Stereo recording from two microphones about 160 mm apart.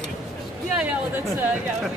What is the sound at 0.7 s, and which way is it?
Speech, 10° right (ahead or behind).